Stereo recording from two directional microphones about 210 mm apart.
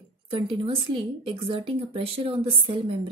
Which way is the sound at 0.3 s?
25° right (ahead or behind).